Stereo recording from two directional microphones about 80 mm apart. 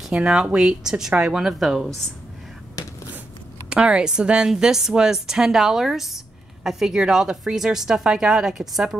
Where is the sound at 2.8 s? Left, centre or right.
Left.